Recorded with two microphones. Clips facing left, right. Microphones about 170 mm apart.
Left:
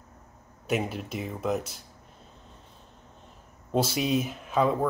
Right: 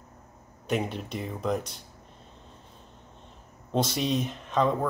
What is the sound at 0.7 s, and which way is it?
Speech, 5° left (ahead or behind).